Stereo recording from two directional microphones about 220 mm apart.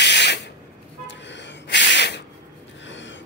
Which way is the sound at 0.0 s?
50° left (ahead or behind).